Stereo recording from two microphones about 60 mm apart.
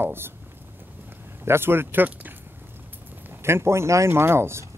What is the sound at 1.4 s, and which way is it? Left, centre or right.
Speech, right.